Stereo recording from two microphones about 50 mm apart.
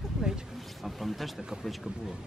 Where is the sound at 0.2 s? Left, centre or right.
Centre.